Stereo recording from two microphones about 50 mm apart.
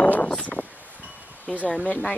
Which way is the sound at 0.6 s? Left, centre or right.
Left.